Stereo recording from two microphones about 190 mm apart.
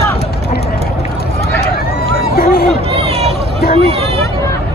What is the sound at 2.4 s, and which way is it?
Chatter, 50° left (ahead or behind).